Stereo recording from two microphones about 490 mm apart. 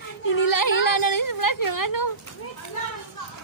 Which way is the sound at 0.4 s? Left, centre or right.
Left.